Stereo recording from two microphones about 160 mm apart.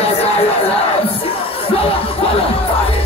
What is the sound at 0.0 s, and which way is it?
Music, 40° left (ahead or behind).